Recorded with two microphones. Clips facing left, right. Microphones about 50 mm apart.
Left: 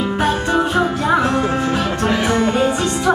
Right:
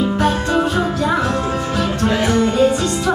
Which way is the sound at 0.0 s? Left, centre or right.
Centre.